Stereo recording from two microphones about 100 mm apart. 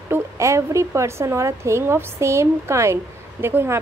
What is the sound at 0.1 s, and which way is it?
A woman's voice, 30° right (ahead or behind).